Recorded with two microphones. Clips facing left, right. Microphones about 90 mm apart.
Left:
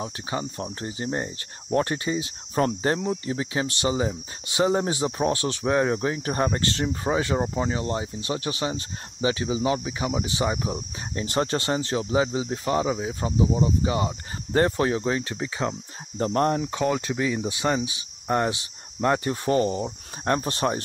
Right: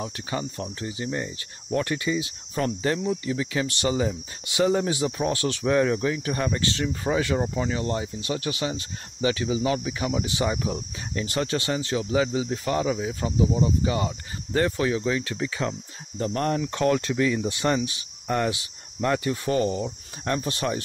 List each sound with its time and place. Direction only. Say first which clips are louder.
0.0 s speech: even; 25° left (ahead or behind)
0.7 s speech: left 1 dB; 35° left (ahead or behind)
14.5 s speech: left 2 dB; 35° left (ahead or behind)
15.3 s speech: even; 25° left (ahead or behind)
16.2 s speech: left 3 dB; 35° left (ahead or behind)
16.7 s speech: right 2 dB; 10° left (ahead or behind); by 20.8 s 35° left (ahead or behind)